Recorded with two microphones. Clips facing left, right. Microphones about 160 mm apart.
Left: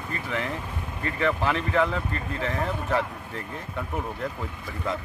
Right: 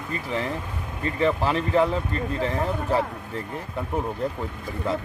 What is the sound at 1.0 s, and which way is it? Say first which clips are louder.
Speech: right 3 dB; 30° right (ahead or behind).